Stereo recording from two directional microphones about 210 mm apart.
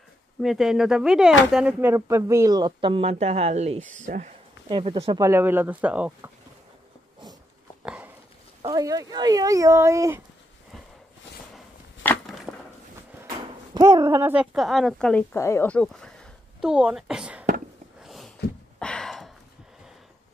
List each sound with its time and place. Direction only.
0.4 s speech: centre (ahead or behind); by 4.3 s 35° right (ahead or behind)
4.6 s speech: 25° right (ahead or behind); by 6.3 s 5° right (ahead or behind)
7.8 s a sound: 5° right (ahead or behind)
8.6 s speech: 15° right (ahead or behind)
11.5 s chopping: 10° left (ahead or behind)
12.5 s a sound: centre (ahead or behind)
13.7 s speech: 15° right (ahead or behind); by 16.1 s 5° left (ahead or behind)
16.6 s whispering: 5° right (ahead or behind)
18.0 s a sound: centre (ahead or behind)